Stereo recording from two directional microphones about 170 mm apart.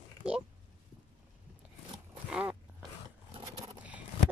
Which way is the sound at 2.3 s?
5° right (ahead or behind).